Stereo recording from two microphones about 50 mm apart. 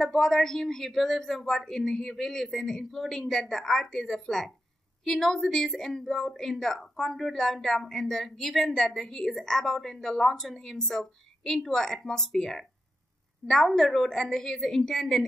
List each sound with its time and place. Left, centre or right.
0.0 s speech: centre